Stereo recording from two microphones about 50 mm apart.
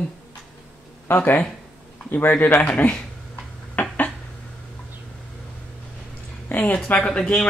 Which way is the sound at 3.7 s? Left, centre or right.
Left.